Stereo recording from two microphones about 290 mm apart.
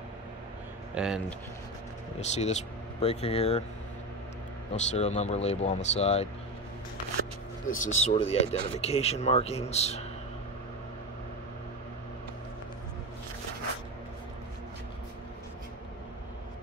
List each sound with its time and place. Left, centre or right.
0.9 s speech: centre
2.1 s speech: left
4.7 s speech: left
7.7 s speech: left